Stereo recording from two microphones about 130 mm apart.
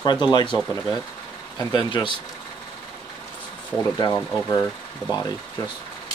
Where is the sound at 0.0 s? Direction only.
35° left (ahead or behind).